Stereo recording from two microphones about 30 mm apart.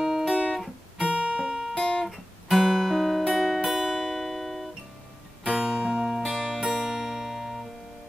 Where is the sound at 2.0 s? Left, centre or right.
Centre.